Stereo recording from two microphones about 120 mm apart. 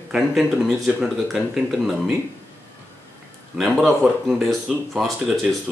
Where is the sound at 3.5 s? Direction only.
Centre (ahead or behind).